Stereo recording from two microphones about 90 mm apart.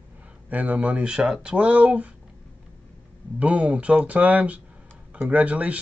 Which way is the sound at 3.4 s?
15° right (ahead or behind).